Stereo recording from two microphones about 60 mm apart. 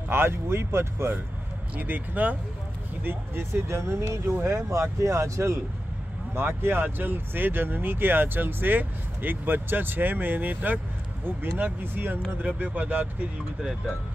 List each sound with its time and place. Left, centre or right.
0.1 s speech: right
1.8 s speech: right
6.3 s speech: right
13.6 s speech: centre